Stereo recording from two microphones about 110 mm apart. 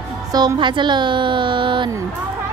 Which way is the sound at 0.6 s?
45° right (ahead or behind).